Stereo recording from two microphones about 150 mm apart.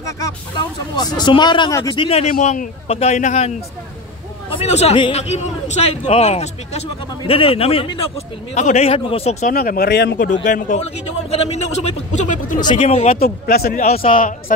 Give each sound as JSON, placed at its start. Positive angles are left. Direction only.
{"t": 0.6, "sound": "speech", "side_deg": 25}
{"t": 1.7, "sound": "speech", "side_deg": 20}
{"t": 2.0, "sound": "speech", "side_deg": 40}
{"t": 2.4, "sound": "a man's voice", "side_deg": 50}
{"t": 9.5, "sound": "a man's voice", "side_deg": 75}
{"t": 12.5, "sound": "speech", "side_deg": 30}
{"t": 12.8, "sound": "a man's voice", "side_deg": 45}
{"t": 13.2, "sound": "speech", "side_deg": 90}